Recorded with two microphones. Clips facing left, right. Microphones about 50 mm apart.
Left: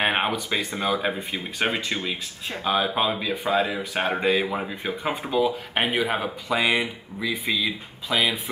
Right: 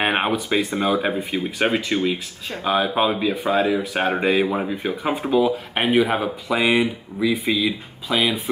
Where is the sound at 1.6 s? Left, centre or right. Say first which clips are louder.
Right 5 dB; centre.